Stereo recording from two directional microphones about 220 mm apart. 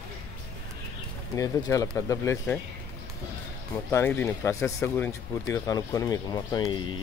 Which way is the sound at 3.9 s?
10° left (ahead or behind).